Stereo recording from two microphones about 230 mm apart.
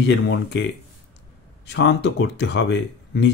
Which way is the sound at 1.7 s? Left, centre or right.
Left.